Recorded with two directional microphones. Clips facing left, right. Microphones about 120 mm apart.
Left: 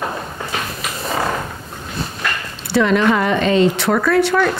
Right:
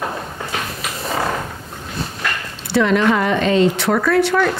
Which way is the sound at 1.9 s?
25° left (ahead or behind).